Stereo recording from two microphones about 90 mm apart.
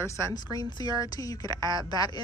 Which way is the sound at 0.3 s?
50° left (ahead or behind).